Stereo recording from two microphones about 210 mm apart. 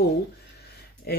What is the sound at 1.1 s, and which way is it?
Speech, 45° left (ahead or behind).